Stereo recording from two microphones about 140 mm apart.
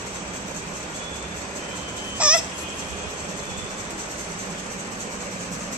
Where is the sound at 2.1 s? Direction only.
10° right (ahead or behind).